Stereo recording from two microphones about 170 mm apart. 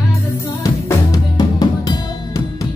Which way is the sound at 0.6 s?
20° left (ahead or behind).